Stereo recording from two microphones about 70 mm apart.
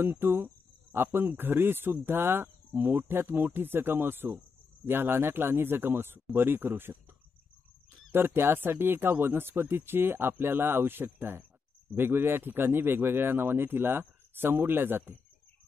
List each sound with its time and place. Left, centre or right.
0.0 s speech: right
8.1 s speech: right